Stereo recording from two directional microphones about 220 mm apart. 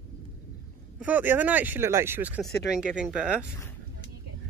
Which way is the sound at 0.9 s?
5° right (ahead or behind).